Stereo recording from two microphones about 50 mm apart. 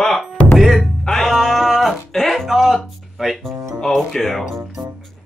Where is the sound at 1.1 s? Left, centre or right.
Centre.